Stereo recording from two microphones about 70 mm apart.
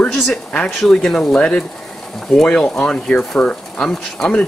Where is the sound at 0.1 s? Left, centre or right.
Centre.